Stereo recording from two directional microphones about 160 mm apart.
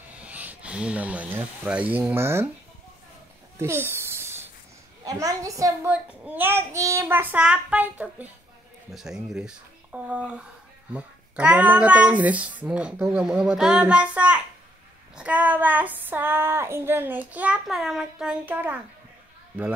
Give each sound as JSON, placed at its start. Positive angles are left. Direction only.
{"t": 0.1, "sound": "speech", "side_deg": -10}
{"t": 3.5, "sound": "a sound", "side_deg": -15}
{"t": 5.0, "sound": "a woman's voice", "side_deg": -20}
{"t": 5.9, "sound": "child singing", "side_deg": -10}
{"t": 8.9, "sound": "speech", "side_deg": 0}
{"t": 10.9, "sound": "child singing", "side_deg": -10}